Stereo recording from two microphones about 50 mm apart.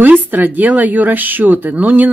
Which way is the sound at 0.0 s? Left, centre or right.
Right.